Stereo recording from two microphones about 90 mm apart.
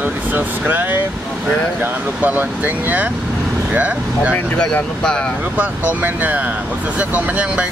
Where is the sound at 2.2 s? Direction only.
20° right (ahead or behind).